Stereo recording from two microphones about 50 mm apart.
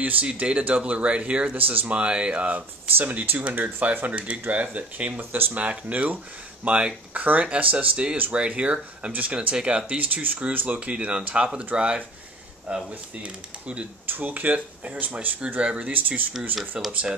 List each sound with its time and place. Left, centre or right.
0.4 s speech: right
1.7 s speech: right
2.0 s speech: right
3.0 s speech: right
7.2 s speech: right
9.9 s speech: right
10.9 s speech: right
14.0 s speech: right
16.8 s speech: centre